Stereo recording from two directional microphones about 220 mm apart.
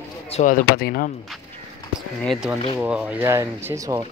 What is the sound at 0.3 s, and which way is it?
Speech, 30° left (ahead or behind).